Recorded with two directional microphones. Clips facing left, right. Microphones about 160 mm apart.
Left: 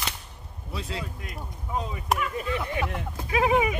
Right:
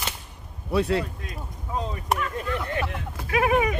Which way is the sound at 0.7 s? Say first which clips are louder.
Right 12 dB; 65° right (ahead or behind).